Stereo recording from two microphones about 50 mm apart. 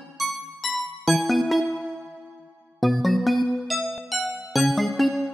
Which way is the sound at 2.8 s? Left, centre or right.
Centre.